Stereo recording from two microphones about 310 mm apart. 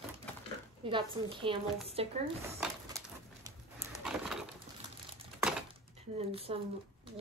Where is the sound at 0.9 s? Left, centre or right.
Centre.